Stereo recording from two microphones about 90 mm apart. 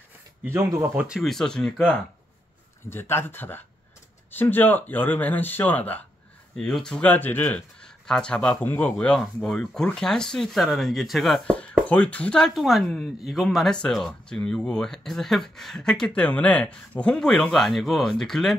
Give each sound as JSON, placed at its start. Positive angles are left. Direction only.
{"t": 0.5, "sound": "speech", "side_deg": -25}
{"t": 0.9, "sound": "speech", "side_deg": -10}
{"t": 1.2, "sound": "speech", "side_deg": 5}
{"t": 2.9, "sound": "speech", "side_deg": 25}
{"t": 6.5, "sound": "speech", "side_deg": 5}
{"t": 7.1, "sound": "speech", "side_deg": 20}
{"t": 8.9, "sound": "speech", "side_deg": 5}
{"t": 11.9, "sound": "speech", "side_deg": 15}
{"t": 13.7, "sound": "speech", "side_deg": 10}